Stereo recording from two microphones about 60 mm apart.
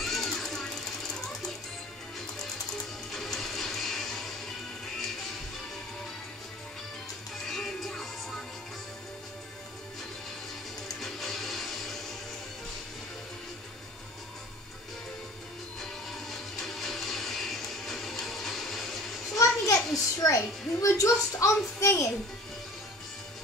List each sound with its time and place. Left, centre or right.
0.0 s sewing machine: centre
3.1 s music: centre
7.4 s music: centre
11.0 s a sound: centre
15.8 s music: centre
19.3 s children playing: left
20.2 s a child's voice: left